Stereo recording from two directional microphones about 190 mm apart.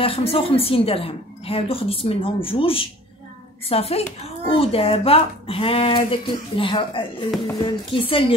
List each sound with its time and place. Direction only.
0.0 s a woman's voice: 30° left (ahead or behind)